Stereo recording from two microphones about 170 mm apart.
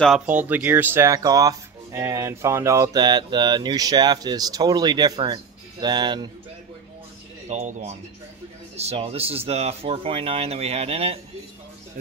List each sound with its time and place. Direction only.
0.3 s speech: 10° right (ahead or behind); by 6.3 s 25° right (ahead or behind)
7.4 s speech: 40° right (ahead or behind)